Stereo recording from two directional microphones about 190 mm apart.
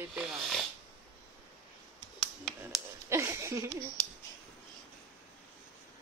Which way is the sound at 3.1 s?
15° right (ahead or behind).